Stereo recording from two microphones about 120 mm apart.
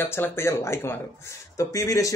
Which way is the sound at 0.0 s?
20° left (ahead or behind).